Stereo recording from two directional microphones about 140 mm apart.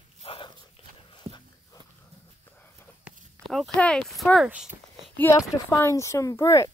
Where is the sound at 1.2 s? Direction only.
45° right (ahead or behind).